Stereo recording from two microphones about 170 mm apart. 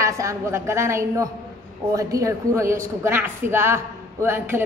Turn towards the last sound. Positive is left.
turn(degrees=-15)  # may be behind; listen again after turning